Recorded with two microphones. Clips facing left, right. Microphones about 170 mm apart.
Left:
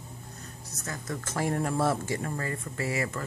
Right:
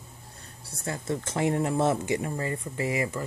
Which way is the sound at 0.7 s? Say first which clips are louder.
Right 6 dB; 30° right (ahead or behind).